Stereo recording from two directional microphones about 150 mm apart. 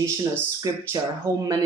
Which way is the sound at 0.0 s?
20° right (ahead or behind).